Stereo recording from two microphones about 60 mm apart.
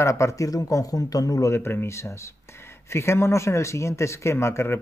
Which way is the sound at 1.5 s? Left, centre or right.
Left.